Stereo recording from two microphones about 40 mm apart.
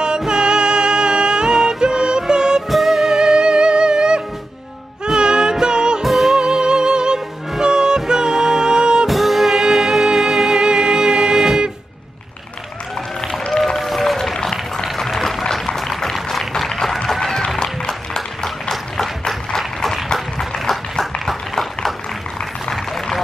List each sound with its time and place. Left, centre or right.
0.2 s music: centre
2.7 s music: centre
6.0 s music: centre
6.4 s music: centre
9.0 s music: centre
13.5 s run: centre
14.3 s a sound: centre
15.5 s applause: centre
17.1 s music: centre
17.6 s a sound: centre
22.4 s music: centre